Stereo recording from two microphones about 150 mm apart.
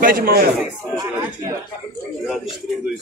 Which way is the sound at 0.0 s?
75° right (ahead or behind).